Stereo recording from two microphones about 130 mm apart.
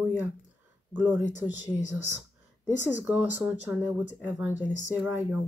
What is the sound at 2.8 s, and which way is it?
Speech, 10° right (ahead or behind).